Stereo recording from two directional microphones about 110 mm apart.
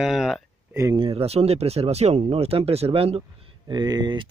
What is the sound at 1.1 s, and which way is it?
Speech, 65° right (ahead or behind).